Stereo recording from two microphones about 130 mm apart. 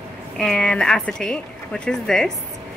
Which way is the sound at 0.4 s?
5° left (ahead or behind).